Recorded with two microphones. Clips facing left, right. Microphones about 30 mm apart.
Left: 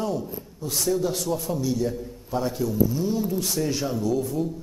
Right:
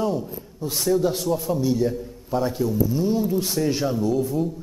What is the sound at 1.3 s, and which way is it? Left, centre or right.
Speech, centre.